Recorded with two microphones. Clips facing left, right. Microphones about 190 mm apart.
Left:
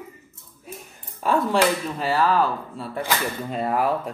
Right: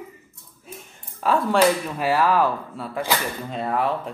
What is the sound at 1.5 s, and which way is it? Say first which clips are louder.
Speech: right 2 dB; 10° right (ahead or behind).